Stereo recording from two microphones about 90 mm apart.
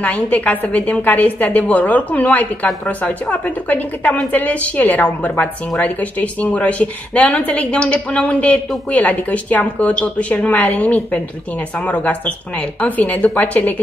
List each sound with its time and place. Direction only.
0.0 s speech: 15° left (ahead or behind)